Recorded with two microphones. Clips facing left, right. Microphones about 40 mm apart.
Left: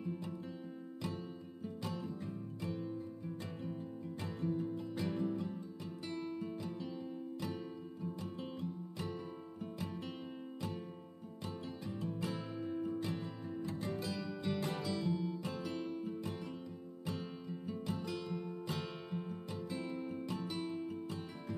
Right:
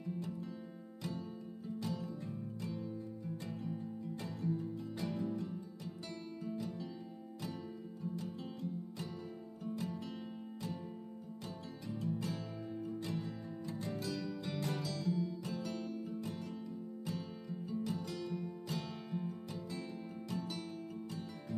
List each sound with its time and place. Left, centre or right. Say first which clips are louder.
1.8 s music: right 2 dB; centre
4.2 s music: left 2 dB; left
12.1 s music: right 2 dB; left
13.8 s music: even; left
17.6 s music: right 2 dB; left
17.9 s music: even; centre